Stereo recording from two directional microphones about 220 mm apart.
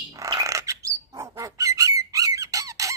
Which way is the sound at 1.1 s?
15° right (ahead or behind).